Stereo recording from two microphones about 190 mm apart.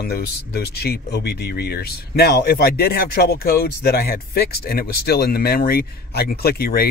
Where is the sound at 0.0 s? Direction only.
55° left (ahead or behind).